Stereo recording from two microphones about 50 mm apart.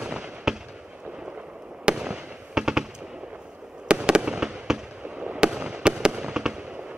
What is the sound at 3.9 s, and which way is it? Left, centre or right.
Fireworks, centre.